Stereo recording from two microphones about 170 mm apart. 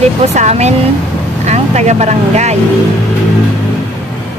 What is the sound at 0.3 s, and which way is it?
Speech, 40° right (ahead or behind).